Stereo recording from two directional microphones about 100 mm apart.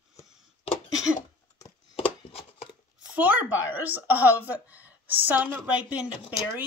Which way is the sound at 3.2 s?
15° right (ahead or behind).